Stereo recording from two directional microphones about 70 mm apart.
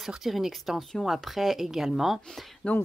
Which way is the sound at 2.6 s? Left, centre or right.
Centre.